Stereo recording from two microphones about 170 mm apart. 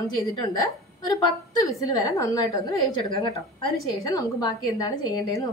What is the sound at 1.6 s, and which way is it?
Speech, 20° left (ahead or behind).